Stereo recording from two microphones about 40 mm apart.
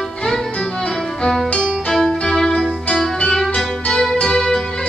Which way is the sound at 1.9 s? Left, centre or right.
Centre.